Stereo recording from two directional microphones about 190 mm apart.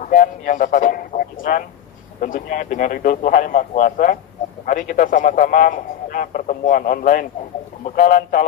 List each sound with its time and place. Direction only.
0.0 s a man's voice: 45° left (ahead or behind)